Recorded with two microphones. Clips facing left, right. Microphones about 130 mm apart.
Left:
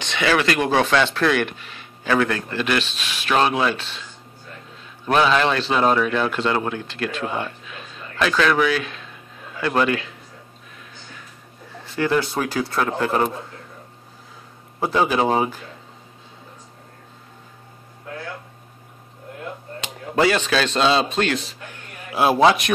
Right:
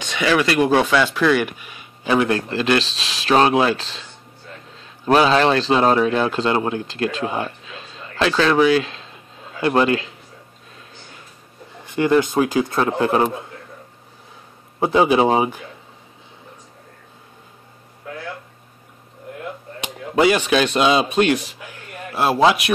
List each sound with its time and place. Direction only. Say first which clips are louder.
0.0 s speech: right 1 dB; 15° right (ahead or behind)
2.3 s speech: right 4 dB; 30° right (ahead or behind)
5.0 s speech: right 3 dB; 35° right (ahead or behind); by 7.5 s 20° right (ahead or behind)
8.2 s speech: right 3 dB; 30° right (ahead or behind)
11.8 s speech: right 4 dB; 15° right (ahead or behind)
14.8 s speech: right 4 dB; 20° right (ahead or behind)
19.8 s speech: right 2 dB; 15° right (ahead or behind)
22.1 s a man's voice: even; centre (ahead or behind)